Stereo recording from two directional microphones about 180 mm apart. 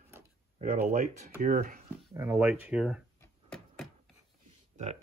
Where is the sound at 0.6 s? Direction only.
40° right (ahead or behind).